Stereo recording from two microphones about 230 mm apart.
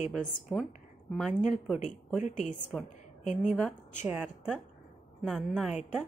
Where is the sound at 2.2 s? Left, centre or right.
Left.